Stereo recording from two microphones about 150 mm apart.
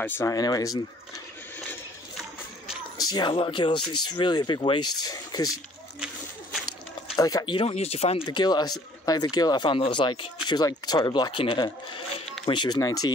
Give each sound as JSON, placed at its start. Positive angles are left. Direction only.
{"t": 0.0, "sound": "speech", "side_deg": 15}
{"t": 3.1, "sound": "speech", "side_deg": 30}
{"t": 7.2, "sound": "speech", "side_deg": 25}
{"t": 7.5, "sound": "speech", "side_deg": 40}